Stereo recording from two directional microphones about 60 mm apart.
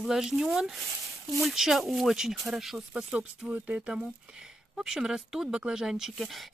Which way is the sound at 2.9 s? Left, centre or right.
Centre.